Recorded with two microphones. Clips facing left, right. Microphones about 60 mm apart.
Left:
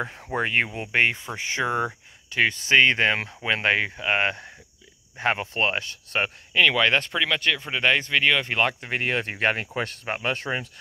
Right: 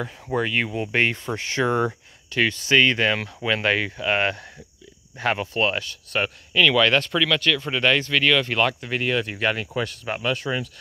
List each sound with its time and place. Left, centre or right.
0.4 s speech: left